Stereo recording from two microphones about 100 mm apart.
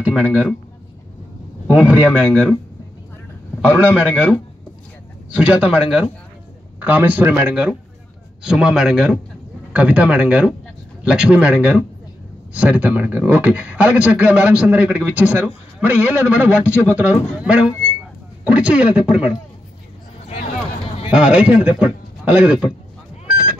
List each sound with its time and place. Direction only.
0.0 s speech: 10° right (ahead or behind)
1.7 s speech: 15° right (ahead or behind)
3.6 s speech: 15° right (ahead or behind)
5.3 s speech: 10° right (ahead or behind)
6.8 s speech: 20° right (ahead or behind)
21.1 s speech: 10° right (ahead or behind)